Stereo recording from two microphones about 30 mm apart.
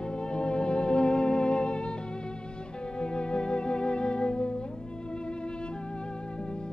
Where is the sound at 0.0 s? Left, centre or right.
Left.